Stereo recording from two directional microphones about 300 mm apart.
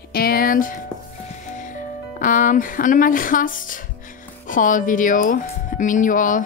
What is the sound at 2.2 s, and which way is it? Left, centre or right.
Speech, left.